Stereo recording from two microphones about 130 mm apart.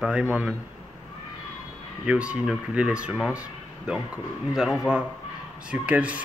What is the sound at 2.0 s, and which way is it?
Speech, 10° right (ahead or behind).